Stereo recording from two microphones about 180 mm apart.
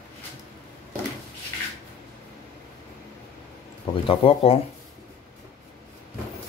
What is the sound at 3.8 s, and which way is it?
Speech, 30° left (ahead or behind).